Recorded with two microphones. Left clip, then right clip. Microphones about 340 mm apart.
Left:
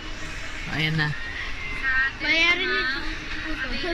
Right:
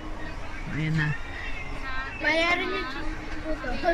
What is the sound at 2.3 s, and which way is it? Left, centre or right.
Speech, right.